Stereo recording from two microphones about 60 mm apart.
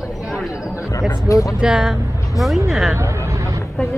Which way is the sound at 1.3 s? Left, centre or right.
Left.